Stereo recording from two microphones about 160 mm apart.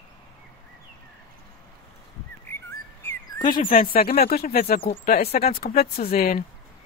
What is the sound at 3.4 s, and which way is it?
Speech, 60° left (ahead or behind).